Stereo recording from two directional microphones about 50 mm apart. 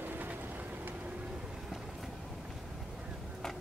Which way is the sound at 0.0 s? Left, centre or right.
Right.